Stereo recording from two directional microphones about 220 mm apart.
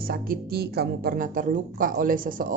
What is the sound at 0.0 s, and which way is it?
Speech, 40° right (ahead or behind).